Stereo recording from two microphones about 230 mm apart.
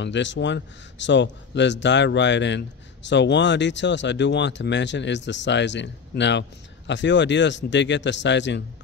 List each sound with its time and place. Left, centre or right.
0.0 s a man's voice: left